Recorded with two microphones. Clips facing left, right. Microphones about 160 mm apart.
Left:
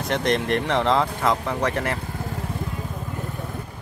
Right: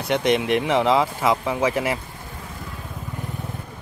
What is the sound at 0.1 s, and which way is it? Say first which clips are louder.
Speech: right 3 dB; 5° right (ahead or behind).